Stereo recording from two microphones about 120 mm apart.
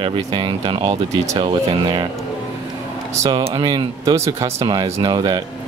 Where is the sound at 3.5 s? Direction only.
40° right (ahead or behind).